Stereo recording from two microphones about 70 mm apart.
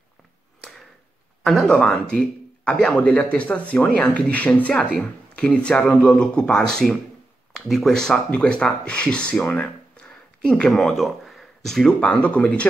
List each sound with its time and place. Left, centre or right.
1.4 s speech: centre
1.7 s speech: centre
9.5 s a sound: centre
11.0 s speech: centre
12.1 s speech: centre